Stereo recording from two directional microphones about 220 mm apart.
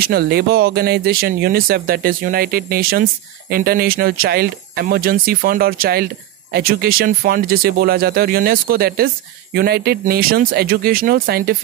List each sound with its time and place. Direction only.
0.0 s speech: 45° right (ahead or behind)